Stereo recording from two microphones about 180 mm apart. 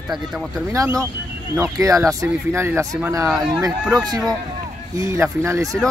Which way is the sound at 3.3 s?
5° right (ahead or behind).